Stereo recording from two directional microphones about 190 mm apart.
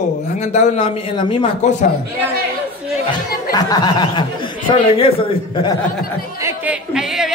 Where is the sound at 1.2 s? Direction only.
25° left (ahead or behind).